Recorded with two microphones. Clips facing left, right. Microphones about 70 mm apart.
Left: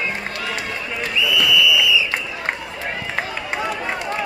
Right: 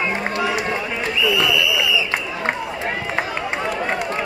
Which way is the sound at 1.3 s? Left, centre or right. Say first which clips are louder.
Left 3 dB; right.